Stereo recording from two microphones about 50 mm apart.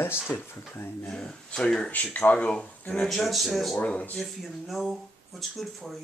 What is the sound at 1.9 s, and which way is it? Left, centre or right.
Speech, left.